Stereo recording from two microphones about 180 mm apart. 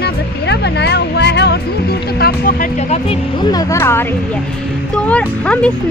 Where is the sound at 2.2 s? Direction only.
55° left (ahead or behind).